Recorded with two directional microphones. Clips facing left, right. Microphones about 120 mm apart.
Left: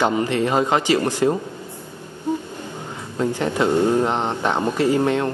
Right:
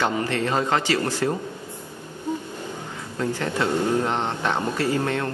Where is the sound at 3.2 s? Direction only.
20° left (ahead or behind).